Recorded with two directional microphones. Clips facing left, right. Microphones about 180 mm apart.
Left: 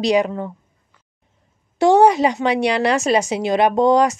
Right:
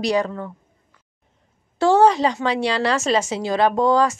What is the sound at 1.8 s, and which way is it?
A woman's voice, 15° left (ahead or behind).